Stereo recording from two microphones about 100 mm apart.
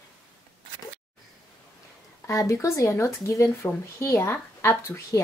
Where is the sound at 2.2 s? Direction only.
30° left (ahead or behind).